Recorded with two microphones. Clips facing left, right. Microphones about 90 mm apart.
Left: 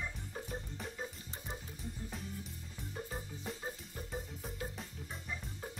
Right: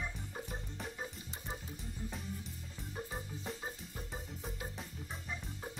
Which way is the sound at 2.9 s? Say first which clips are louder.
Right 1 dB; centre (ahead or behind).